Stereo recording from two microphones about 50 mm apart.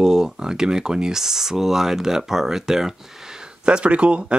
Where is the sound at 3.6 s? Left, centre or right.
Right.